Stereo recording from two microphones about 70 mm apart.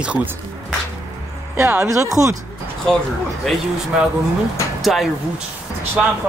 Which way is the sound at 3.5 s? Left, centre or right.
Centre.